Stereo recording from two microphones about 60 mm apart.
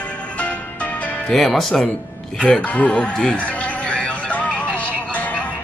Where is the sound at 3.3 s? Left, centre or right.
Left.